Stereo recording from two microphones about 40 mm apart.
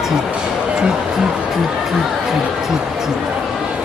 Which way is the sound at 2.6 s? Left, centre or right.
Centre.